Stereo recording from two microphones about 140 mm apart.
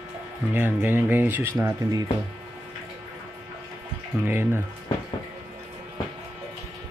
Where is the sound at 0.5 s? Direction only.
15° right (ahead or behind).